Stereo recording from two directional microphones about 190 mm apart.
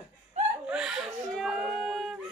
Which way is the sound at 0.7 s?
5° right (ahead or behind).